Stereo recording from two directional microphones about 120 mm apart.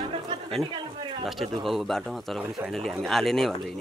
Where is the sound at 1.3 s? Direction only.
Centre (ahead or behind).